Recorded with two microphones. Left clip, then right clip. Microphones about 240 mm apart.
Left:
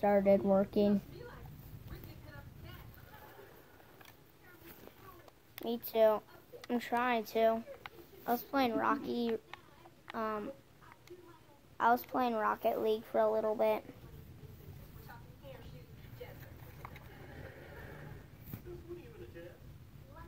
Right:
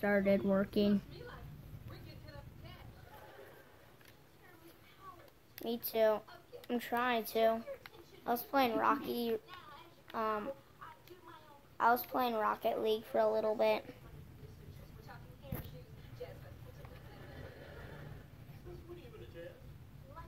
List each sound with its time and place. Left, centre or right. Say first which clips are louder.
0.0 s a woman's voice: left 4 dB; centre
5.7 s a woman's voice: left 3 dB; centre
8.2 s a child's voice: even; centre
11.8 s a woman's voice: left 1 dB; centre